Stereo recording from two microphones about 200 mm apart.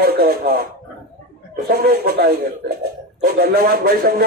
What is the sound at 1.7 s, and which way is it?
Speech, 50° right (ahead or behind).